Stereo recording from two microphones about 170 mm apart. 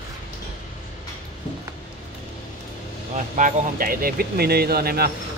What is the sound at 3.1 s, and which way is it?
Speech, 50° right (ahead or behind).